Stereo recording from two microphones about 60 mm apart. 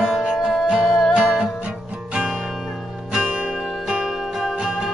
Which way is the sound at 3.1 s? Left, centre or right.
Centre.